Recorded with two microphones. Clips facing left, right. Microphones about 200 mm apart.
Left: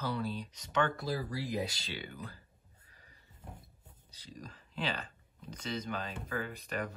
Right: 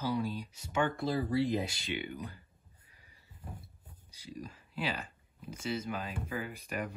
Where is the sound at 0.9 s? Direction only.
25° right (ahead or behind).